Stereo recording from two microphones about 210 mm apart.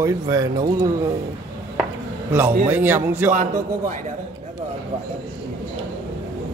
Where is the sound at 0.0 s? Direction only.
15° right (ahead or behind).